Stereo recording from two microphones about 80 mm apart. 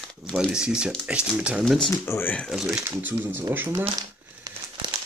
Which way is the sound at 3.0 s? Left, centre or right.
Right.